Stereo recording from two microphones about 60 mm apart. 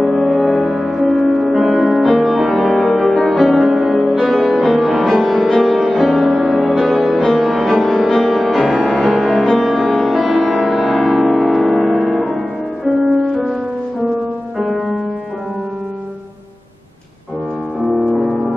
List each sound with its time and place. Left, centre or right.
0.0 s music: centre